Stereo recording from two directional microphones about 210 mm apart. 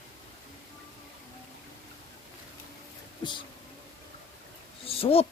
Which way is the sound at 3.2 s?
20° left (ahead or behind).